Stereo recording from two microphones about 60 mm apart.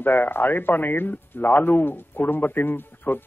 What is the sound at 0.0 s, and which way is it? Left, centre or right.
Speech, left.